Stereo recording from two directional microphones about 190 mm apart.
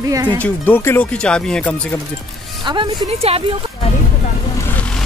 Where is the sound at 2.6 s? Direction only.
25° right (ahead or behind).